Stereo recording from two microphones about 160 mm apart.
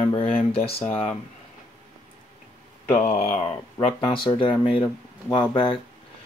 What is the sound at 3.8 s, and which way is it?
Speech, 30° left (ahead or behind).